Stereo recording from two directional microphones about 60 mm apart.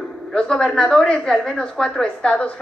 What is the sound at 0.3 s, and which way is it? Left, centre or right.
A woman's voice, centre.